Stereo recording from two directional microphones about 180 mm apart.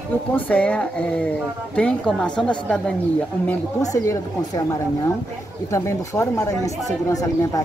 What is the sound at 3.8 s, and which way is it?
A woman's voice, 20° left (ahead or behind).